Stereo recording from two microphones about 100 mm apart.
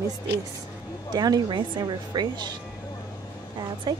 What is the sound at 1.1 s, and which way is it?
Speech, 45° right (ahead or behind).